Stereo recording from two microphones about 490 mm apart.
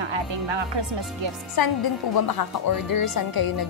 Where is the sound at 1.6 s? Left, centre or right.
Left.